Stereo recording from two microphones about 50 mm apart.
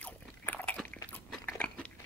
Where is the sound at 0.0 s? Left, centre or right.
Left.